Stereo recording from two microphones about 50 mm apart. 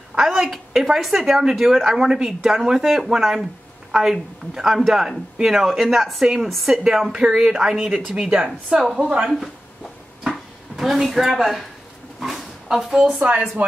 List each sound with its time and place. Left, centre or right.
0.2 s a woman's voice: centre
10.2 s a sound: centre
13.1 s speech: right